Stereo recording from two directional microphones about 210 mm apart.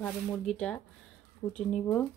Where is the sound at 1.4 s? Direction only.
20° left (ahead or behind).